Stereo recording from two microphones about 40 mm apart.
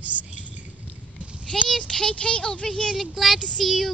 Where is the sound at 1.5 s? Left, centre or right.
Left.